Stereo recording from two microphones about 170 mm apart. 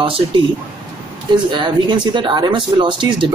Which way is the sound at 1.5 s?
25° right (ahead or behind).